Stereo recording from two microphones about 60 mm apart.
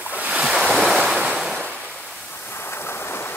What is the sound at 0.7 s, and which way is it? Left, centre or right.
Waves, centre.